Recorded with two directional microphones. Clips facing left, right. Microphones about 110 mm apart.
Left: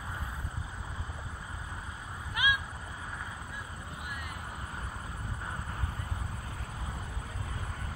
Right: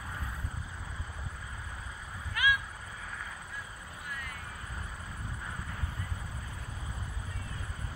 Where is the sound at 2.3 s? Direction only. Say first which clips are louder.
Right 1 dB; 20° left (ahead or behind).